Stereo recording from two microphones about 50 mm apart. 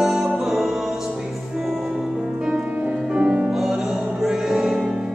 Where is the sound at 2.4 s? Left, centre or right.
Right.